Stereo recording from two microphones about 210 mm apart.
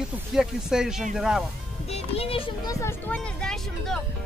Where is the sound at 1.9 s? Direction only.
25° left (ahead or behind).